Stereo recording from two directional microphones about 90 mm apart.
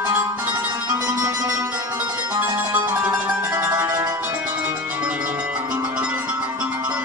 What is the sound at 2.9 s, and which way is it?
Music, 20° right (ahead or behind).